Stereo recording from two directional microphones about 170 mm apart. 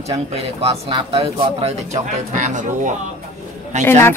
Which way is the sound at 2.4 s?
45° right (ahead or behind).